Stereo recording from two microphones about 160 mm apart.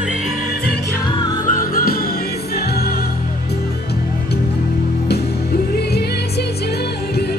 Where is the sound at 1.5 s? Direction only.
65° left (ahead or behind).